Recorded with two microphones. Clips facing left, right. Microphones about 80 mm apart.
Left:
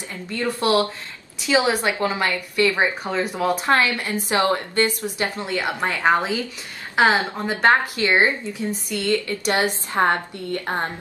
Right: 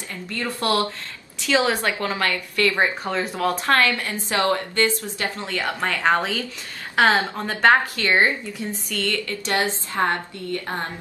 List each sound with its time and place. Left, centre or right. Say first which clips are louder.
0.1 s a woman's voice: left 2 dB; centre
0.6 s a woman's voice: left 2 dB; centre
3.3 s a woman's voice: left 1 dB; centre